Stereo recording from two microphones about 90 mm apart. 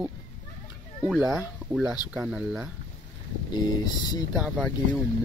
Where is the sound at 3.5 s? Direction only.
55° left (ahead or behind).